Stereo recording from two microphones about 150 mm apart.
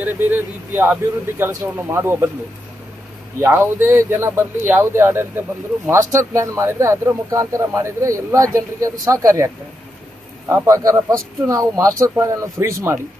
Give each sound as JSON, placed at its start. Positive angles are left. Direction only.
{"t": 0.0, "sound": "speech", "side_deg": -10}
{"t": 3.3, "sound": "a man's voice", "side_deg": -15}
{"t": 10.5, "sound": "a man's voice", "side_deg": -20}